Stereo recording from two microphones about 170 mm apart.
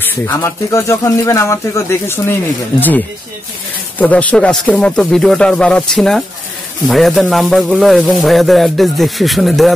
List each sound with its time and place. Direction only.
0.3 s speech: 20° left (ahead or behind)
4.0 s a man's voice: 10° left (ahead or behind)